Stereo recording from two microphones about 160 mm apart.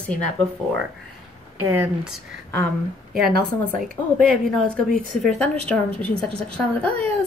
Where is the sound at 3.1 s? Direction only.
70° right (ahead or behind).